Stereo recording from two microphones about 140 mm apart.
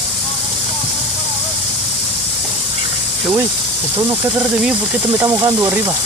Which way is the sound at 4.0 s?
15° right (ahead or behind).